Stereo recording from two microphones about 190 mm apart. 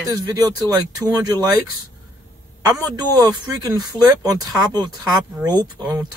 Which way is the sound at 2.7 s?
20° right (ahead or behind).